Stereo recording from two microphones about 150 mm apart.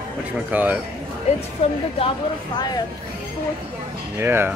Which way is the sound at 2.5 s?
25° left (ahead or behind).